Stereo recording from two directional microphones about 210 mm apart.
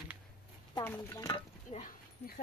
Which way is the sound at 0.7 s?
15° left (ahead or behind).